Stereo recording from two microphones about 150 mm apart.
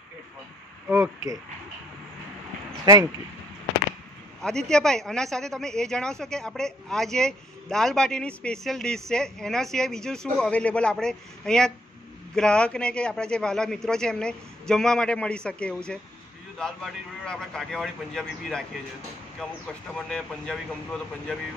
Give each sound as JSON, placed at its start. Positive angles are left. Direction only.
{"t": 0.8, "sound": "speech", "side_deg": -10}
{"t": 2.8, "sound": "speech", "side_deg": -25}
{"t": 4.4, "sound": "speech", "side_deg": 5}